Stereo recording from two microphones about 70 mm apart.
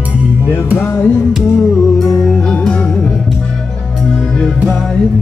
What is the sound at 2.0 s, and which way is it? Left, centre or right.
Music, centre.